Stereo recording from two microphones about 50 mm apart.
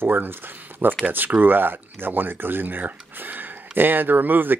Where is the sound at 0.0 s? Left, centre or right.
Right.